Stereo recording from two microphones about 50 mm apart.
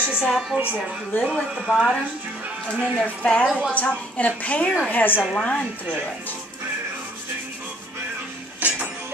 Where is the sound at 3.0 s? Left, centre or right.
Left.